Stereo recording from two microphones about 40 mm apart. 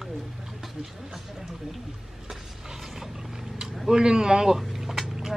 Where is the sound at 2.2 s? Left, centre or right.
Centre.